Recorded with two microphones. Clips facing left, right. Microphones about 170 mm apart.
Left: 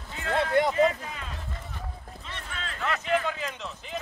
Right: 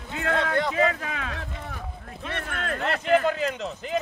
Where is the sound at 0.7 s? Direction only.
90° right.